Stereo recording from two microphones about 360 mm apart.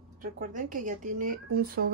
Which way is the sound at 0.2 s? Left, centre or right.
Right.